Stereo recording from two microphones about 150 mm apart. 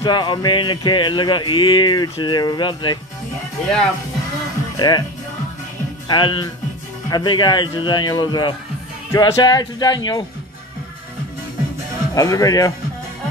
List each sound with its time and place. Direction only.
0.0 s music: 30° left (ahead or behind)
4.7 s music: 30° left (ahead or behind)
6.0 s speech: 30° left (ahead or behind)
7.1 s music: 30° left (ahead or behind)
12.1 s music: 25° left (ahead or behind)